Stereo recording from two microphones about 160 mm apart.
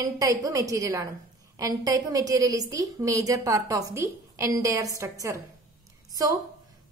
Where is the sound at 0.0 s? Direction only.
20° right (ahead or behind).